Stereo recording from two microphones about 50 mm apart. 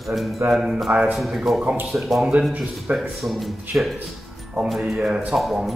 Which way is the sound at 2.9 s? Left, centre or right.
Centre.